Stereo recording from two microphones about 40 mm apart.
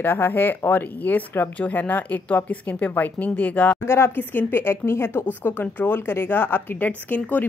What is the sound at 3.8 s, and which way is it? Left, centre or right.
Speech, left.